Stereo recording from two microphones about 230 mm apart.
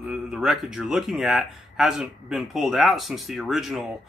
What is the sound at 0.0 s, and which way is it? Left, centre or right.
Speech, centre.